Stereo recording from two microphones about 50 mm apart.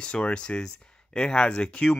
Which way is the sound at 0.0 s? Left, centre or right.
Left.